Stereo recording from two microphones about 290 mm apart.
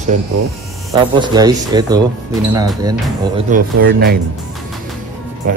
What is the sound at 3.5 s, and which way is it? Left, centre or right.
Speech, right.